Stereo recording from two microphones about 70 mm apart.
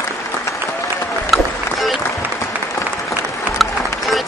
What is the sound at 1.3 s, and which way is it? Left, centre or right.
Applause, centre.